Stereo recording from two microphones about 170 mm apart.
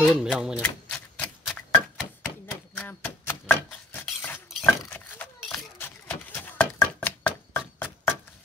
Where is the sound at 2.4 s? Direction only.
10° left (ahead or behind).